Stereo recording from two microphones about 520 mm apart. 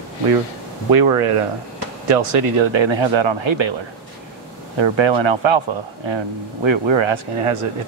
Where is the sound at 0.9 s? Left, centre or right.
Right.